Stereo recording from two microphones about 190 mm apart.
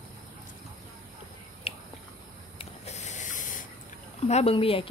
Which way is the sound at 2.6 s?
35° left (ahead or behind).